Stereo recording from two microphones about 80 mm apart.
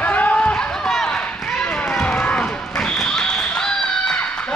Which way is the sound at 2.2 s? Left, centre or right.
Centre.